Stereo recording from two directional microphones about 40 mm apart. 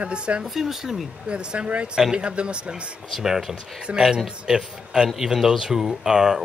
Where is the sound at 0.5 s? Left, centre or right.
Centre.